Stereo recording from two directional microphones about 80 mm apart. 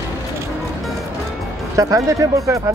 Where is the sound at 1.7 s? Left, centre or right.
Right.